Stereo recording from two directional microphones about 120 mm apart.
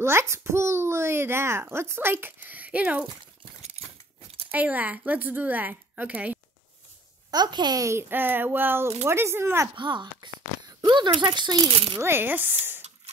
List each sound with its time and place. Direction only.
0.0 s a child's voice: 20° right (ahead or behind)
4.5 s a woman's voice: 15° right (ahead or behind)
7.2 s a child's voice: 35° right (ahead or behind)
9.8 s speech: 40° right (ahead or behind)
12.0 s a woman's voice: 20° right (ahead or behind)